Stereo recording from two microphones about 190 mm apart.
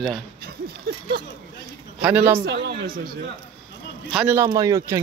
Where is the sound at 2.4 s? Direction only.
60° right (ahead or behind).